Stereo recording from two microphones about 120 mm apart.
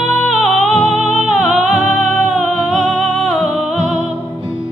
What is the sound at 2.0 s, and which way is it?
Music, 90° right.